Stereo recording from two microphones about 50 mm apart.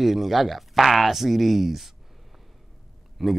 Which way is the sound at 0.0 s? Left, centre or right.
Centre.